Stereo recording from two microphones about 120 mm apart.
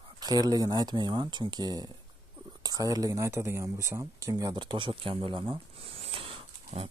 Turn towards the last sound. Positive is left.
turn(degrees=-50)  # may be behind; listen again after turning